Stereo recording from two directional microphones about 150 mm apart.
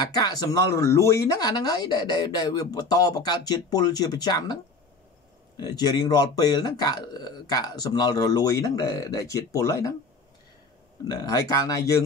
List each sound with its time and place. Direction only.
0.1 s speech: 25° left (ahead or behind)
5.6 s speech: 25° left (ahead or behind)
11.1 s speech: 25° left (ahead or behind)